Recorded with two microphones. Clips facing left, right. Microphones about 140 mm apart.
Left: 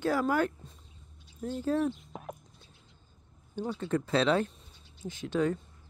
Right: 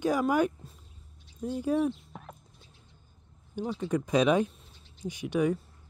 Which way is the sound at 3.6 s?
15° right (ahead or behind).